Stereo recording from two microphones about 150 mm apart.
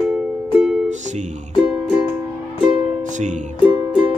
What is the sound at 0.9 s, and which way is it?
Music, 50° right (ahead or behind).